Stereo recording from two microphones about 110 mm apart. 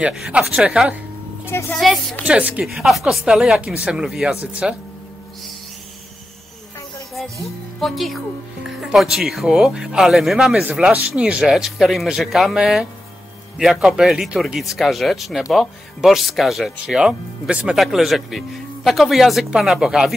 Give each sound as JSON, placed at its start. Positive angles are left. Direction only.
{"t": 0.0, "sound": "speech", "side_deg": -5}
{"t": 1.4, "sound": "speech", "side_deg": 25}
{"t": 1.8, "sound": "speech", "side_deg": 0}
{"t": 2.2, "sound": "speech", "side_deg": -10}
{"t": 2.6, "sound": "speech", "side_deg": 0}
{"t": 7.8, "sound": "speech", "side_deg": 0}